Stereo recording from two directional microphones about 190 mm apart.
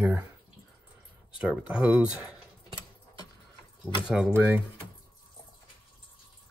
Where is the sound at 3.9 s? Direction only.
5° right (ahead or behind).